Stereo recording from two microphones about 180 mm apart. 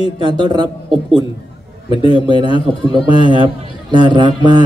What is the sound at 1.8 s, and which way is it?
Speech, 30° left (ahead or behind).